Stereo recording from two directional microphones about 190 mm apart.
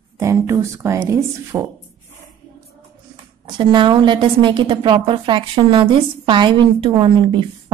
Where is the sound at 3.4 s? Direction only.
25° right (ahead or behind).